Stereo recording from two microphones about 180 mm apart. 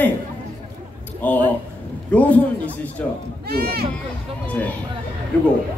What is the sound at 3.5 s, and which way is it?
Speech, 60° right (ahead or behind).